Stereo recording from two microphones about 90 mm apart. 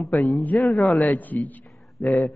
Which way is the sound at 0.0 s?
5° left (ahead or behind).